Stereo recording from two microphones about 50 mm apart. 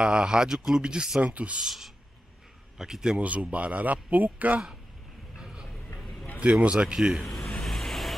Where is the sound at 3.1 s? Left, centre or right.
Right.